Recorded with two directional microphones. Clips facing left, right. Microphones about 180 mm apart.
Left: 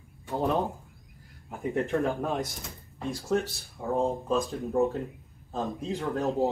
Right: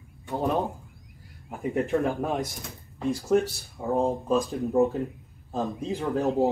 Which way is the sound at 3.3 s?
15° right (ahead or behind).